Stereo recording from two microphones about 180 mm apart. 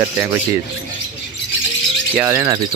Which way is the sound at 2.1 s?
10° right (ahead or behind).